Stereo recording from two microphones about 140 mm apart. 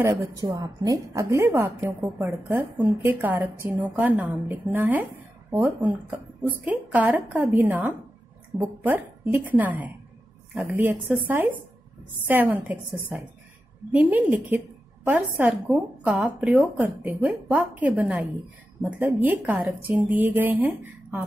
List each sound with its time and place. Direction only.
0.0 s a woman's voice: 20° right (ahead or behind)